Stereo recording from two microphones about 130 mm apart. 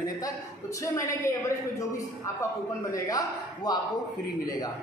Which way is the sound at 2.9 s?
30° left (ahead or behind).